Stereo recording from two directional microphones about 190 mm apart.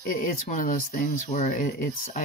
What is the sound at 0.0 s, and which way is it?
Speech, 45° left (ahead or behind).